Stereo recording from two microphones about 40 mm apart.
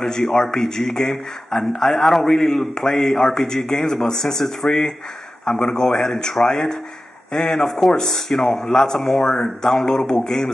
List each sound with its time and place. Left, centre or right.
0.0 s speech: centre
7.6 s speech: centre